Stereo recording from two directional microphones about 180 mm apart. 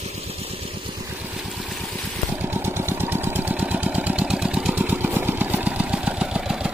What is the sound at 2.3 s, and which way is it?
Engine, 10° right (ahead or behind).